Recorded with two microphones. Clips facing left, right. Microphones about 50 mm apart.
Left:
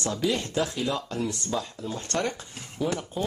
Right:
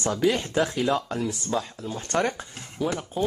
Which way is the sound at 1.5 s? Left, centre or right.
Centre.